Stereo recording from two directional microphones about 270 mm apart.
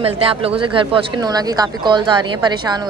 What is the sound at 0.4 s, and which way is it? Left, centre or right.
Speech, centre.